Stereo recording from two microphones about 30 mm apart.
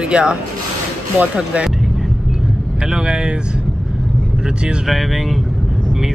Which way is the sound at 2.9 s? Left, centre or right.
Right.